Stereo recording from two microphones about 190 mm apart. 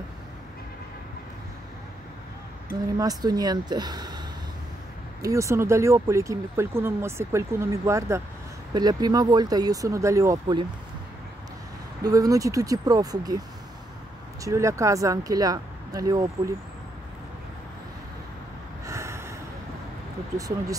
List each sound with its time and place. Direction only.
3.0 s speech: 20° right (ahead or behind)
5.2 s speech: 15° right (ahead or behind)
12.0 s speech: 20° right (ahead or behind)
14.4 s speech: 15° right (ahead or behind)
18.9 s snort: 15° right (ahead or behind)
20.3 s speech: 15° right (ahead or behind)